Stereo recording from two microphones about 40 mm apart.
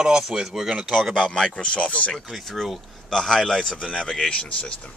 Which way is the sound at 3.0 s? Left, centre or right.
Centre.